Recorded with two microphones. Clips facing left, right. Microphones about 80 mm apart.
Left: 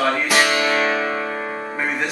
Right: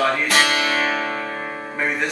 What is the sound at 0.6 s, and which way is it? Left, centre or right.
Music, centre.